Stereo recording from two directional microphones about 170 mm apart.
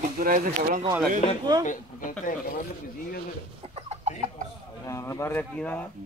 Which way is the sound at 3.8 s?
40° right (ahead or behind).